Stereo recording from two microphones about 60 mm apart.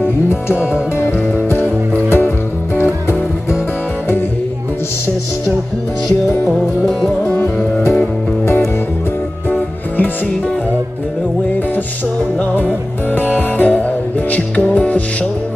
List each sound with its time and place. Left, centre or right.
0.0 s music: left
7.2 s music: left
13.1 s music: left